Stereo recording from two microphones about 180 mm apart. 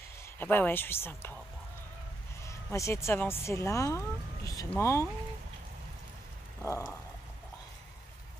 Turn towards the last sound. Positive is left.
turn(degrees=15)  # may be behind; listen again after turning